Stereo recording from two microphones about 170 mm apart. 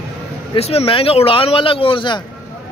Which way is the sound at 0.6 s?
35° left (ahead or behind).